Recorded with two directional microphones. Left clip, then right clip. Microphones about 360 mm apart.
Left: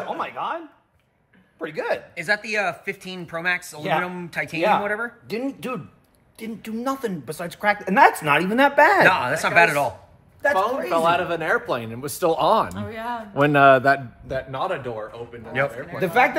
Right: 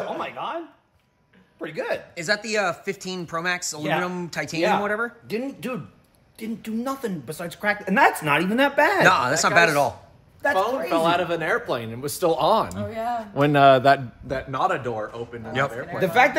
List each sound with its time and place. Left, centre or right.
0.1 s a sound: centre
1.6 s speech: centre
10.9 s speech: centre
12.7 s speech: centre
13.3 s speech: centre
14.2 s a man's voice: right
16.0 s speech: centre